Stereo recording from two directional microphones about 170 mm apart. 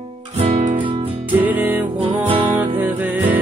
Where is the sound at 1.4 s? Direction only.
10° right (ahead or behind).